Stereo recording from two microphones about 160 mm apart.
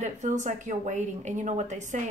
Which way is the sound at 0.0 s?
50° right (ahead or behind).